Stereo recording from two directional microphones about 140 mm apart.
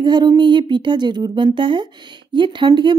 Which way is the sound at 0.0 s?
30° right (ahead or behind).